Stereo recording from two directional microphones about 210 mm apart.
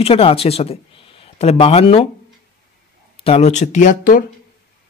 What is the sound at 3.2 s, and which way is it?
Speech, 30° left (ahead or behind).